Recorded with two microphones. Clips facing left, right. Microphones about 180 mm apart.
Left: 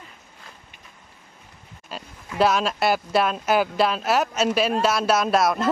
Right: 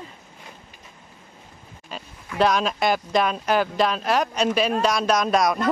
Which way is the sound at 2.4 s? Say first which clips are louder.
Even; 5° left (ahead or behind).